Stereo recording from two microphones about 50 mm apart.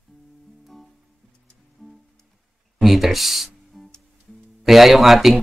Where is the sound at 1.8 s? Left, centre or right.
Centre.